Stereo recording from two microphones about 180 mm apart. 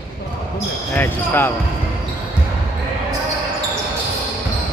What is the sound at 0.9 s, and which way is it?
Speech, 10° left (ahead or behind).